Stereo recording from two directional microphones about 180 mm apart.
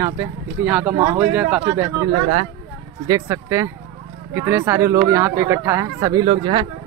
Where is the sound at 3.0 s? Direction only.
20° right (ahead or behind).